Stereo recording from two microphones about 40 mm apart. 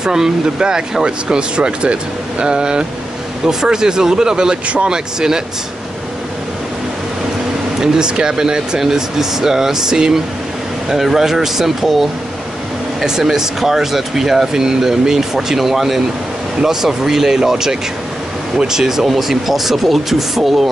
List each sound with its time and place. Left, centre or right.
0.0 s speech: centre
7.8 s speech: centre